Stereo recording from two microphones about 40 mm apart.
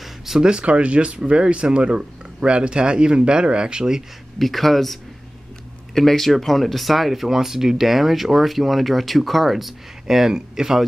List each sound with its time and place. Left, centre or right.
0.0 s a sound: centre
0.4 s speech: right
4.4 s speech: centre
5.9 s speech: centre